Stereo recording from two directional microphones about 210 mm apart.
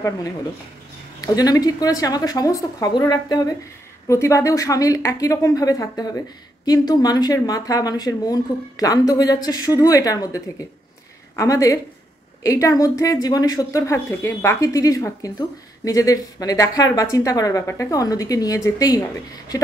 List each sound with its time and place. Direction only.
1.2 s a woman's voice: 15° left (ahead or behind)